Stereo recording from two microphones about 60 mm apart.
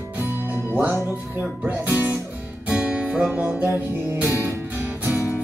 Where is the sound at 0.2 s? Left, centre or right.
Right.